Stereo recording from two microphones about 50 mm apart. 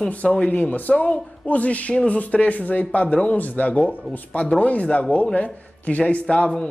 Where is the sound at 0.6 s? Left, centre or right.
Left.